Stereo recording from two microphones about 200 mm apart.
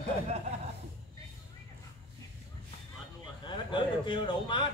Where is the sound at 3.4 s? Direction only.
25° left (ahead or behind).